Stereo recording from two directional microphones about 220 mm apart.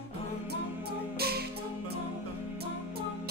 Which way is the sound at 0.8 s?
45° right (ahead or behind).